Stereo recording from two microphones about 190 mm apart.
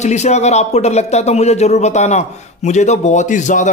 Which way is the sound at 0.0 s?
35° left (ahead or behind).